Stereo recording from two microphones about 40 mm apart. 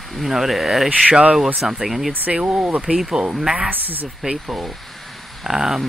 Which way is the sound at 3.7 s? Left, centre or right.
Right.